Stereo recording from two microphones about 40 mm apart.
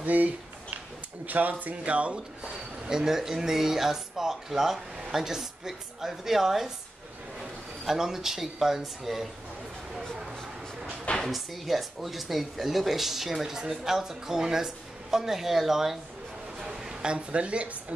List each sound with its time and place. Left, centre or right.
0.0 s a sound: right
1.2 s speech: right
2.9 s speech: centre
7.8 s speech: centre
11.1 s speech: centre
16.5 s a sound: centre; by 17.9 s right